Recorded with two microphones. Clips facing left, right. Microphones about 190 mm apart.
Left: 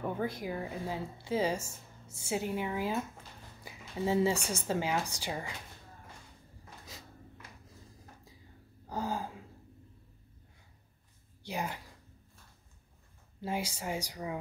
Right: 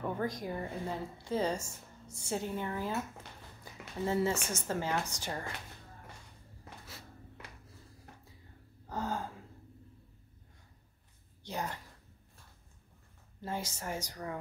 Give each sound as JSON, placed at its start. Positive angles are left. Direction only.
{"t": 0.0, "sound": "a woman's voice", "side_deg": 10}
{"t": 3.6, "sound": "a sound", "side_deg": 10}
{"t": 4.6, "sound": "a woman's voice", "side_deg": 15}
{"t": 8.8, "sound": "gasp", "side_deg": 10}
{"t": 11.4, "sound": "a woman's voice", "side_deg": 10}
{"t": 13.4, "sound": "a woman's voice", "side_deg": 10}